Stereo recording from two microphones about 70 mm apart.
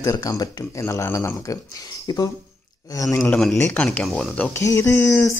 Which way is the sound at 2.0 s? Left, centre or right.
Left.